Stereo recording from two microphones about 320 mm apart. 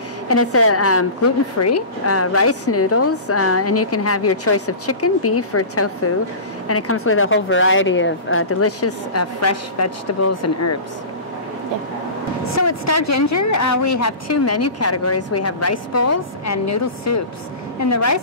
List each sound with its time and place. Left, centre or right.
0.3 s a woman's voice: left
12.4 s a woman's voice: left